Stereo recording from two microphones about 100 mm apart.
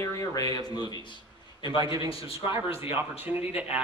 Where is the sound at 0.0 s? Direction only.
35° left (ahead or behind).